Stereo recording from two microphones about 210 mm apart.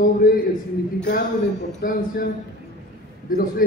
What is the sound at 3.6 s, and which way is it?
Speech, 40° left (ahead or behind).